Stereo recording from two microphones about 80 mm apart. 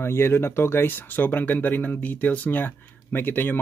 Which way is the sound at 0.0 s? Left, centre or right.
Left.